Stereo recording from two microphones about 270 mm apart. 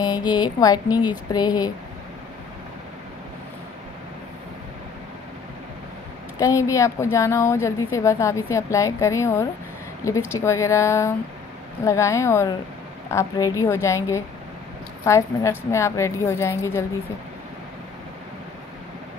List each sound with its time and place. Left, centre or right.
0.0 s a woman's voice: centre
6.4 s a woman's voice: centre